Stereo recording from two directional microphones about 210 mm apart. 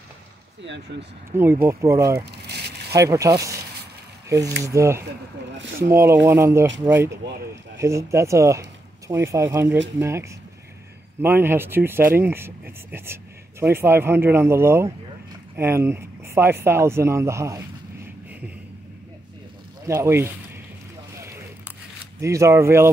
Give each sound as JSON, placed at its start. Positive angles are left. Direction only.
{"t": 0.7, "sound": "speech", "side_deg": -55}
{"t": 1.3, "sound": "speech", "side_deg": -10}
{"t": 2.1, "sound": "a sound", "side_deg": -50}
{"t": 2.9, "sound": "speech", "side_deg": -15}
{"t": 19.9, "sound": "speech", "side_deg": -10}
{"t": 22.2, "sound": "speech", "side_deg": -15}